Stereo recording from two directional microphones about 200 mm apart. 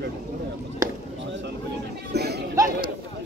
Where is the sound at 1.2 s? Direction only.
65° right (ahead or behind).